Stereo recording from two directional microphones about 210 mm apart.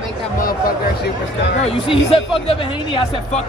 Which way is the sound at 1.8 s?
25° left (ahead or behind).